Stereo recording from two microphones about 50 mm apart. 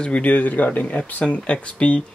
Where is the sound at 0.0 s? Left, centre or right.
Left.